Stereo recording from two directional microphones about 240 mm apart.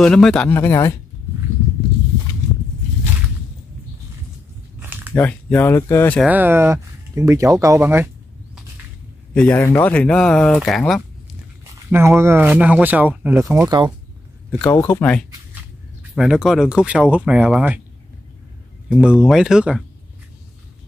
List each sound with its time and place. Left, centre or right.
0.0 s speech: centre
5.1 s speech: centre
6.2 s speech: centre
9.3 s speech: centre
11.9 s speech: centre
14.6 s speech: centre
18.9 s speech: centre